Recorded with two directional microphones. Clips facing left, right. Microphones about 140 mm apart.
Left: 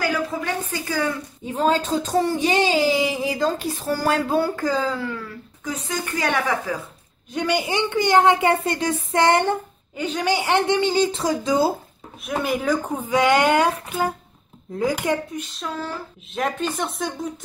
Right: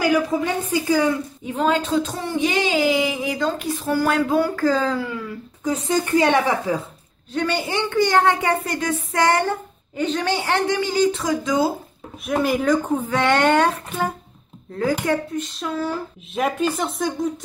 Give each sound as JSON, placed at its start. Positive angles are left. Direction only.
{"t": 0.0, "sound": "speech", "side_deg": -20}
{"t": 1.6, "sound": "speech", "side_deg": 35}
{"t": 4.8, "sound": "speech", "side_deg": 0}
{"t": 5.6, "sound": "speech", "side_deg": -30}
{"t": 7.3, "sound": "a woman's voice", "side_deg": 15}
{"t": 9.9, "sound": "a woman's voice", "side_deg": 10}
{"t": 12.2, "sound": "speech", "side_deg": 0}
{"t": 15.4, "sound": "speech", "side_deg": 0}